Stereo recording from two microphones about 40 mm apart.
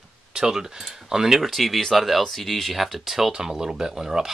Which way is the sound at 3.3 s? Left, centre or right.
Centre.